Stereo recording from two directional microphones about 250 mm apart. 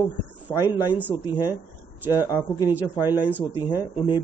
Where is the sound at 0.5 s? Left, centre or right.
Centre.